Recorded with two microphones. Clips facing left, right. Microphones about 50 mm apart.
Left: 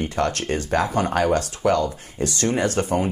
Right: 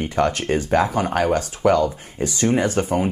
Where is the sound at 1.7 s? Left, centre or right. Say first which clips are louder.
Right 3 dB; right.